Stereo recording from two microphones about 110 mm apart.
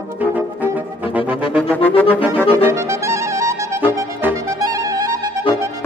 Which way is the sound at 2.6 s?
25° right (ahead or behind).